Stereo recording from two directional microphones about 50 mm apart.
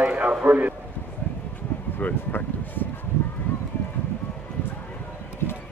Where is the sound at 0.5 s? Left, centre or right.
Right.